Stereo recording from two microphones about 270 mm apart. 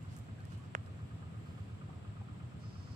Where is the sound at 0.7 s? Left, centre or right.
Right.